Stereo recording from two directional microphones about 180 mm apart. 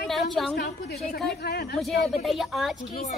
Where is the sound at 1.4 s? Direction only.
65° left (ahead or behind).